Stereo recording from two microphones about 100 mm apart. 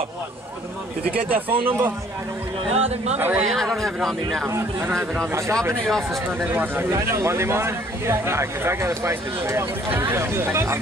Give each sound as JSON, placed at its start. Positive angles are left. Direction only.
{"t": 1.1, "sound": "speech", "side_deg": -70}
{"t": 1.7, "sound": "speech", "side_deg": -20}
{"t": 2.7, "sound": "speech", "side_deg": -90}
{"t": 3.2, "sound": "speech", "side_deg": -15}
{"t": 3.4, "sound": "speech", "side_deg": 0}
{"t": 5.3, "sound": "speech", "side_deg": -30}